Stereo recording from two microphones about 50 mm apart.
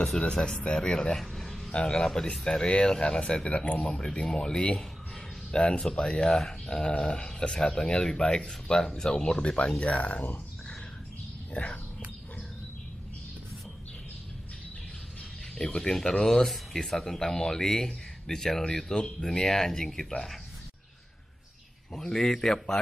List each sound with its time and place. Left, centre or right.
0.0 s speech: centre
1.2 s a sound: centre
1.7 s speech: left
11.5 s speech: left
15.5 s speech: centre
21.9 s speech: centre